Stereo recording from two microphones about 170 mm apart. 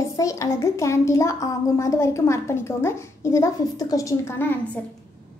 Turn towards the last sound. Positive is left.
turn(degrees=10)  # may be behind; listen again after turning